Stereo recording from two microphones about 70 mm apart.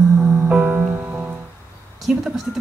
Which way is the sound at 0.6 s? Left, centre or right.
Right.